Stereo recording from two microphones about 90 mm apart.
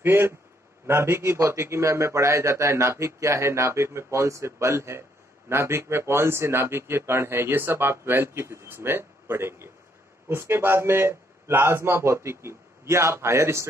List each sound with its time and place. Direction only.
0.0 s a man's voice: 25° right (ahead or behind)